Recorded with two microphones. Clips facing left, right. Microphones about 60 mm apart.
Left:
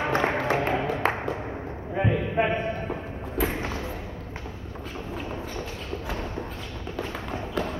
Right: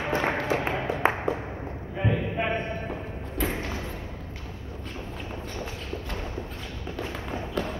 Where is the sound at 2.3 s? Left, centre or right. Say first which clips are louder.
Left 3 dB; centre.